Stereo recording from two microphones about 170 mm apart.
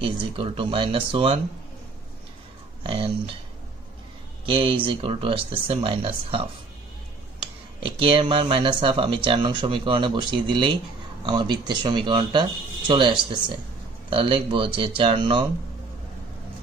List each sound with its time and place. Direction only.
0.0 s speech: 35° right (ahead or behind)
2.8 s speech: 30° right (ahead or behind)
4.5 s speech: 30° right (ahead or behind)
7.8 s speech: 30° right (ahead or behind)